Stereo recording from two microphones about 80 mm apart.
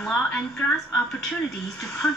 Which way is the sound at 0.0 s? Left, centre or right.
Centre.